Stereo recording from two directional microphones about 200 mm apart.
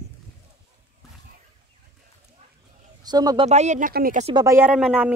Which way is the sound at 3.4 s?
35° right (ahead or behind).